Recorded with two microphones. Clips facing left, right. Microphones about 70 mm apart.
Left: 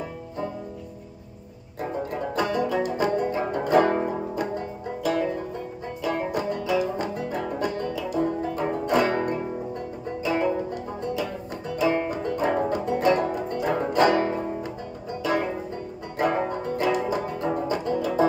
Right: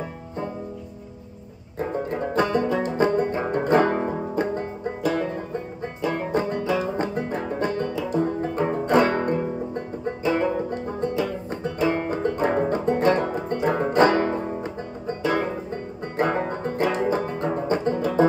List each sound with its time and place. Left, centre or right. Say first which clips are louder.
1.8 s banjo: right 3 dB; right
3.5 s music: right 1 dB; right
6.0 s banjo: right 2 dB; right
11.8 s music: right 1 dB; right
16.2 s banjo: right 1 dB; right